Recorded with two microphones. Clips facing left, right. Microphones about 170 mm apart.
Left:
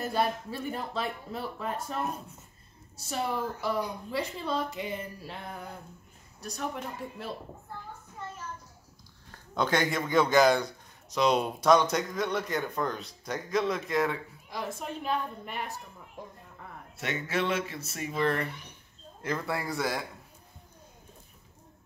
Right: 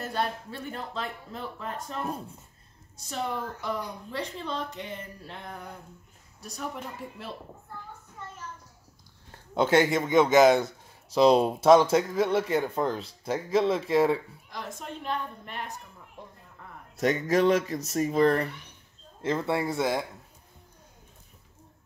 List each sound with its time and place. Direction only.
0.0 s speech: 10° left (ahead or behind)
9.5 s a man's voice: 25° right (ahead or behind)
14.5 s speech: 10° left (ahead or behind)
16.9 s speech: 40° right (ahead or behind)
19.2 s a man's voice: 25° right (ahead or behind)